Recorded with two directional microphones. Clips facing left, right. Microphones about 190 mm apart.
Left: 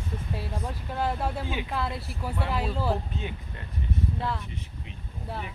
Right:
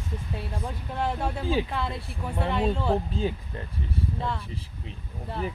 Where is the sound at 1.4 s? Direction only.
35° right (ahead or behind).